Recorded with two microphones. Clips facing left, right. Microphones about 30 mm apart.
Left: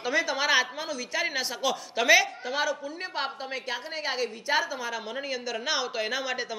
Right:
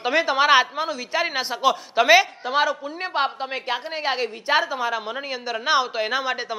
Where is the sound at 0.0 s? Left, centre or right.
Right.